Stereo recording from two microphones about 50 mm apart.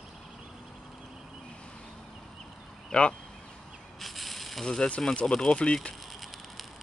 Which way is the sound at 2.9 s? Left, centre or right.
Centre.